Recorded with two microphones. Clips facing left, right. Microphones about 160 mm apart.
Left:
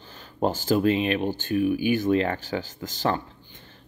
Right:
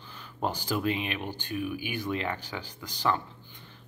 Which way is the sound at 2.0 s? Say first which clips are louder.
Left 9 dB; 45° left (ahead or behind).